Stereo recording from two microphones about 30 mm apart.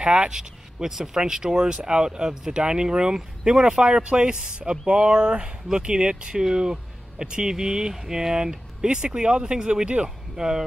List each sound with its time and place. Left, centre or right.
0.3 s speech: centre; by 10.1 s right
10.3 s speech: centre